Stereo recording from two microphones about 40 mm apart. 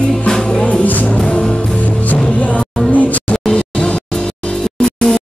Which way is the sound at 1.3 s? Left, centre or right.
Left.